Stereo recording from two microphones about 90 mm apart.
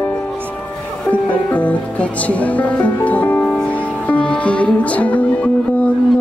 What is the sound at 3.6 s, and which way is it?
Music, 15° left (ahead or behind).